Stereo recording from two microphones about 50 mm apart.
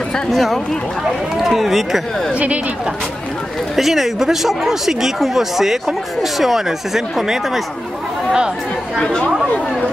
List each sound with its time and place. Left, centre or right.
0.3 s speech: centre
2.3 s speech: right
3.7 s speech: centre